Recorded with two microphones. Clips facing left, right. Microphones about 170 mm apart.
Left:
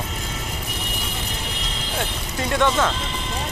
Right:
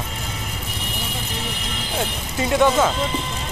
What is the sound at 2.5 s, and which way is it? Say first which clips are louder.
Speech: right 3 dB; 10° right (ahead or behind).